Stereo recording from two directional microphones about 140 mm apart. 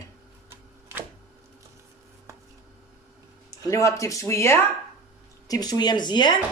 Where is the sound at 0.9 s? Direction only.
20° right (ahead or behind).